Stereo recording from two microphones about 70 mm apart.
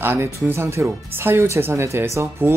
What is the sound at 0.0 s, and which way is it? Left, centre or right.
Speech, right.